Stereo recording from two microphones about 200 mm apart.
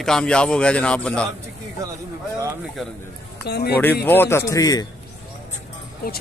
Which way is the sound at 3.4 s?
55° left (ahead or behind).